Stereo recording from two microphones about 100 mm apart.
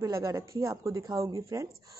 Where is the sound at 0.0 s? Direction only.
35° right (ahead or behind).